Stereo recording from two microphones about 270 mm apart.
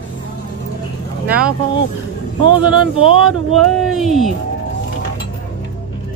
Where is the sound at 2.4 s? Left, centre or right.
Right.